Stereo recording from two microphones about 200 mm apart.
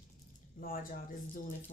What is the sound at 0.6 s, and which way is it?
Speech, 45° left (ahead or behind).